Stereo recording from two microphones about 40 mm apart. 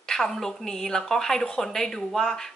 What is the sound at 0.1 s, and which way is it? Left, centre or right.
A woman's voice, centre.